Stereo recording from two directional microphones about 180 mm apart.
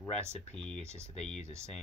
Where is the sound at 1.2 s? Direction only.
5° left (ahead or behind).